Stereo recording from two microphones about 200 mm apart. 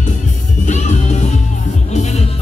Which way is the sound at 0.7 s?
35° left (ahead or behind).